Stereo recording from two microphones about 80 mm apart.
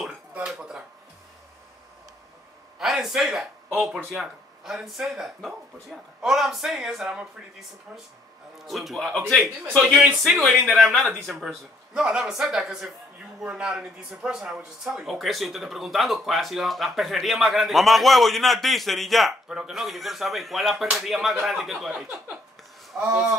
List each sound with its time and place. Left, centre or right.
0.5 s speech: centre
2.8 s a man's voice: centre
22.9 s speech: centre